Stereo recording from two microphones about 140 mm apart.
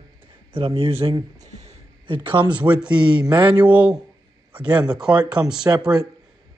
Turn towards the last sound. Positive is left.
turn(degrees=-30)  # may be behind; listen again after turning